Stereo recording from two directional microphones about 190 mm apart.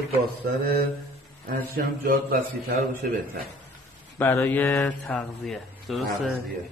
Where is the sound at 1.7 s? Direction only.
50° right (ahead or behind).